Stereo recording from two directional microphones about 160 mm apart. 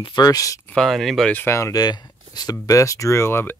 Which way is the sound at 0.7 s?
Centre (ahead or behind).